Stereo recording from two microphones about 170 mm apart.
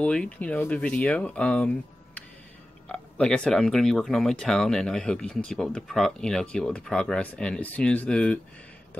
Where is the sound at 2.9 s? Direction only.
5° left (ahead or behind).